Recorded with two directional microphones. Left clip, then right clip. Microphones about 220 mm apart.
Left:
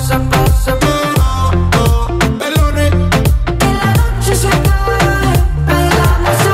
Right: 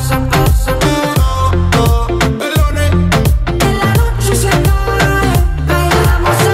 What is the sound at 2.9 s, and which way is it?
Music, centre (ahead or behind).